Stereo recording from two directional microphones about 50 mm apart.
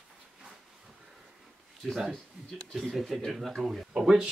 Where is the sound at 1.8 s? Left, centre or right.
Centre.